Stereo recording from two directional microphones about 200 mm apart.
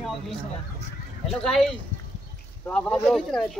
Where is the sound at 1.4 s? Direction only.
5° left (ahead or behind).